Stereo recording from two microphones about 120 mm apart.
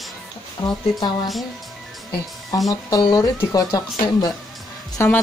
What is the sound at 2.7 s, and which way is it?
Speech, 35° left (ahead or behind).